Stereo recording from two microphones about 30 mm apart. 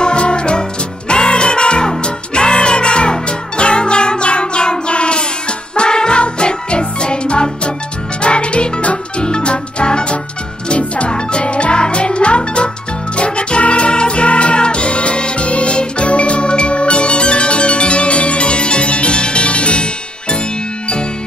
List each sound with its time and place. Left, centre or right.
0.0 s music: left